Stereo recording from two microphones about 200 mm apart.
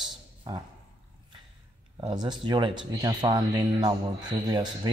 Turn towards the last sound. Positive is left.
turn(degrees=-20)  # may be behind; listen again after turning